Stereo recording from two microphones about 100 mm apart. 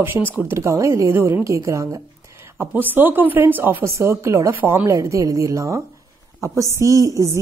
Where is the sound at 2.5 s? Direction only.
20° right (ahead or behind).